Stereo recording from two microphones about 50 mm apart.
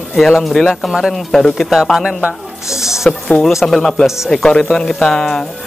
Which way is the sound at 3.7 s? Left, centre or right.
Centre.